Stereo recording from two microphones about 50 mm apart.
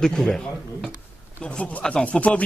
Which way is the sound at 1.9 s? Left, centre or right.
Left.